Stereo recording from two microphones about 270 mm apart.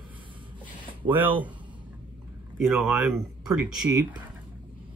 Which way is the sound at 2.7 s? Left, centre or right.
Centre.